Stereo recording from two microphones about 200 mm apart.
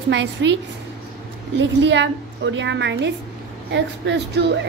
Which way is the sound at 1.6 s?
60° right (ahead or behind).